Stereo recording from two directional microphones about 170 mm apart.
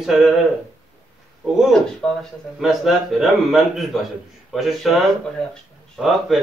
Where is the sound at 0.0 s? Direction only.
Centre (ahead or behind).